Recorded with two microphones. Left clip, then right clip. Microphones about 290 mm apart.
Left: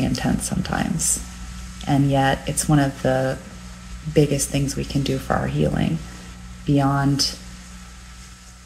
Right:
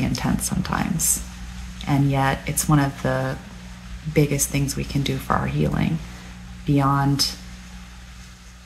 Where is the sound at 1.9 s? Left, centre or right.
Centre.